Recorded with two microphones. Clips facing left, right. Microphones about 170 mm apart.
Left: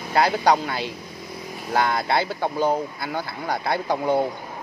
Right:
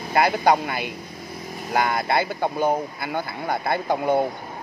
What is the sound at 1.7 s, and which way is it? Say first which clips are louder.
Speech: even; 10° right (ahead or behind).